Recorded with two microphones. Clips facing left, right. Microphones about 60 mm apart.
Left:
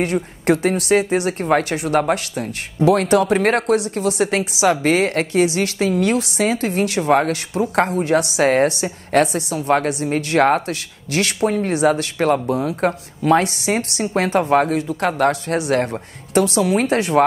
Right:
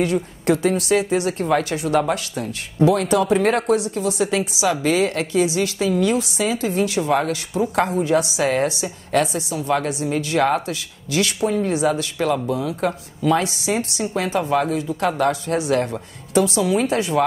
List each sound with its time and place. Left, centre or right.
0.0 s a woman's voice: left
15.8 s speech: left
16.4 s a woman's voice: left